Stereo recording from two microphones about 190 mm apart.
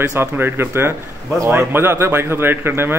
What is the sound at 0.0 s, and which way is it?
A man's voice, 10° right (ahead or behind).